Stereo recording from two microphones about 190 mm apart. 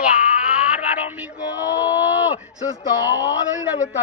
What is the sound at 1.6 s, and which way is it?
Speech, 20° left (ahead or behind).